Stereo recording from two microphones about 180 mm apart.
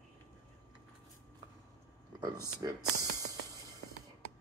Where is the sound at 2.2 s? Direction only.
20° right (ahead or behind).